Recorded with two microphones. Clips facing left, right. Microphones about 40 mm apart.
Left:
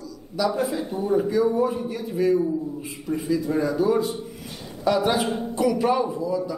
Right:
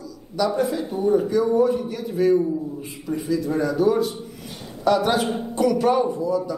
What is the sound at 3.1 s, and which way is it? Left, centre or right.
Speech, right.